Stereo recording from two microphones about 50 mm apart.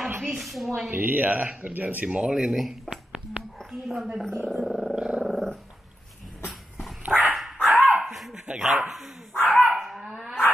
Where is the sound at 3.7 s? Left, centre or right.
Centre.